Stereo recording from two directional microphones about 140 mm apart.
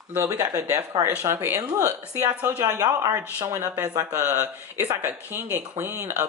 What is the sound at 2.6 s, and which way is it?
Speech, 25° right (ahead or behind).